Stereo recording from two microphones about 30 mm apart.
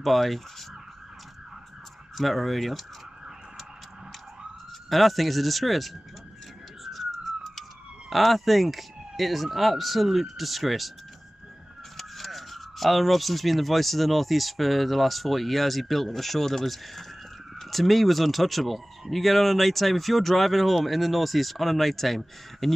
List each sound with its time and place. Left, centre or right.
0.0 s speech: centre
2.1 s speech: centre
4.8 s speech: centre
6.8 s emergency vehicle: centre
8.1 s speech: centre
12.0 s speech: centre